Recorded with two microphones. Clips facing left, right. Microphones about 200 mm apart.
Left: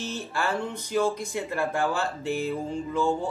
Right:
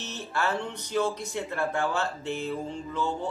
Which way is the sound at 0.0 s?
10° left (ahead or behind).